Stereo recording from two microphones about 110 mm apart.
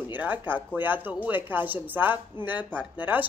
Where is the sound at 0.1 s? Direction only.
15° right (ahead or behind).